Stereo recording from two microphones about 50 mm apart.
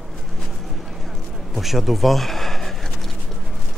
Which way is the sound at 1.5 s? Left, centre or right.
Centre.